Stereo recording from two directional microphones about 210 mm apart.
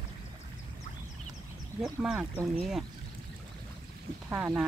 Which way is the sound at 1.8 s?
5° right (ahead or behind).